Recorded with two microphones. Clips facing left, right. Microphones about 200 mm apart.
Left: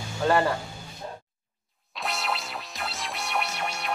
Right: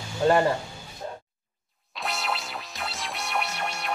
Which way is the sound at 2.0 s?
Centre (ahead or behind).